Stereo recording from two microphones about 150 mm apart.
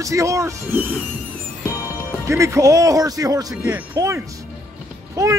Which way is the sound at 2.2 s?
20° right (ahead or behind).